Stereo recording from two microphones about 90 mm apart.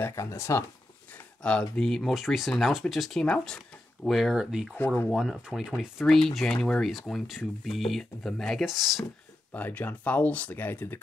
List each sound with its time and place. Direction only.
0.0 s speech: 30° left (ahead or behind)
1.4 s speech: 10° left (ahead or behind); by 4.7 s 5° right (ahead or behind)
4.7 s speech: 20° left (ahead or behind)
5.1 s speech: centre (ahead or behind)
9.5 s speech: 20° left (ahead or behind)